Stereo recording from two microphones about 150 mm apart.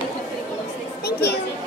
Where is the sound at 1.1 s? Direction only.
90° left.